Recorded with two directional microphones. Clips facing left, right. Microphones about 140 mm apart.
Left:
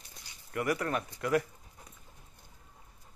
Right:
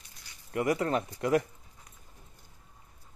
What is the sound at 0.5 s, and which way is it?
Speech, 25° right (ahead or behind).